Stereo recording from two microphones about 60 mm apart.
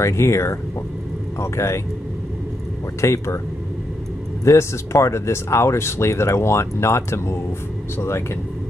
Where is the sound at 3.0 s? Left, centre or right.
Left.